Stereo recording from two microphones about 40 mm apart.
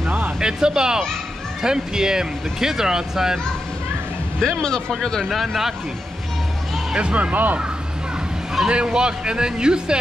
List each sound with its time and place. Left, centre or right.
0.4 s speech: centre
4.4 s speech: centre
5.3 s a man's voice: centre
7.0 s speech: right
8.6 s speech: right